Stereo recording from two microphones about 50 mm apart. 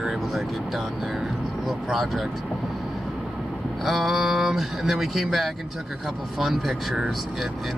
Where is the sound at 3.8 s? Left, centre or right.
Centre.